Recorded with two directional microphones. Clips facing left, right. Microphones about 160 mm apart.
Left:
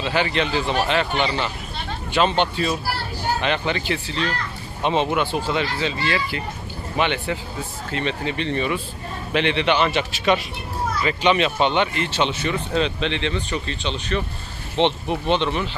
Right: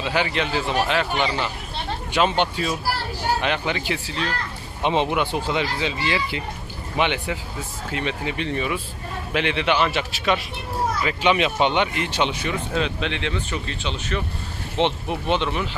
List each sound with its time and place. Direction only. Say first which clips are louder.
0.0 s speech: left 2 dB; 10° right (ahead or behind)